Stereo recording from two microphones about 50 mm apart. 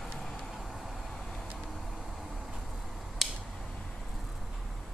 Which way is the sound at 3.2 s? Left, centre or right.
Centre.